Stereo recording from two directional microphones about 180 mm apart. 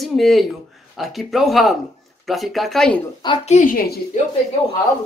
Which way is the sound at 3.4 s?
45° left (ahead or behind).